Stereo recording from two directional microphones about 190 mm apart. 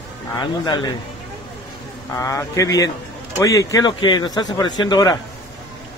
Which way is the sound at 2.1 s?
15° left (ahead or behind).